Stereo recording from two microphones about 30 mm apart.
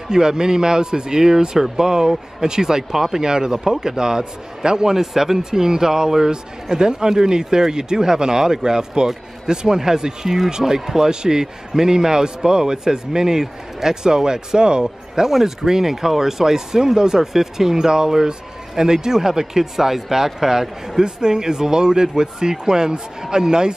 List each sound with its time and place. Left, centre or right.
0.1 s a man's voice: right
5.0 s a man's voice: centre
15.2 s a man's voice: centre